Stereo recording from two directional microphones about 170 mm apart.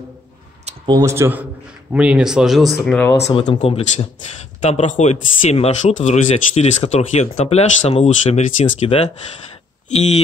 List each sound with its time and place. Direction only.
0.8 s a man's voice: 20° right (ahead or behind); by 3.0 s centre (ahead or behind)
3.3 s speech: 35° left (ahead or behind)